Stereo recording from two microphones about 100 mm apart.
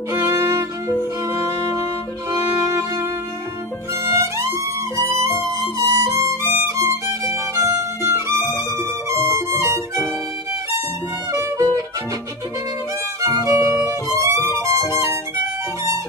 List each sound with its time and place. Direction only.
0.1 s violin: 30° right (ahead or behind)
1.2 s music: 30° right (ahead or behind)
6.5 s violin: 25° right (ahead or behind)
8.7 s music: 30° right (ahead or behind)
11.3 s music: 35° right (ahead or behind)
13.2 s violin: 30° right (ahead or behind)